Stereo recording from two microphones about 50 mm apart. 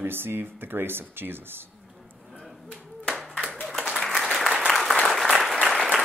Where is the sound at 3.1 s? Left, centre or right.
Centre.